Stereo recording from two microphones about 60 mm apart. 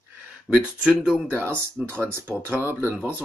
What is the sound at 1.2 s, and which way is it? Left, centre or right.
Speech, right.